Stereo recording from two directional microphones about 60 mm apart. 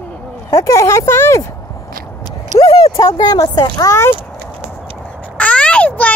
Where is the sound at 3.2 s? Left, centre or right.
Left.